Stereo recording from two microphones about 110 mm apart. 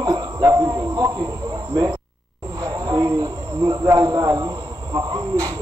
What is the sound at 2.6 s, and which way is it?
Speech, 40° right (ahead or behind).